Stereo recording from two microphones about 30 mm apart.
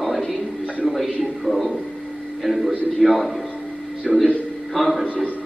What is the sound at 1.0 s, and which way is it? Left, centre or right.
A man's voice, centre.